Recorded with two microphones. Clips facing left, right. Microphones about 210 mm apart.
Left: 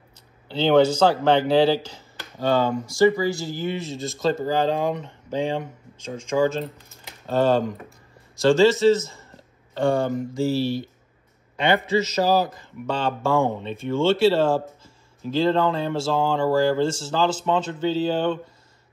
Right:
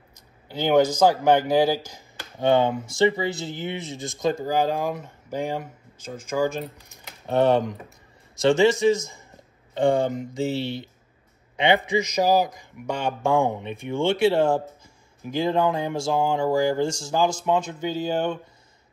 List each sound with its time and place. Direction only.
0.5 s a man's voice: 10° right (ahead or behind)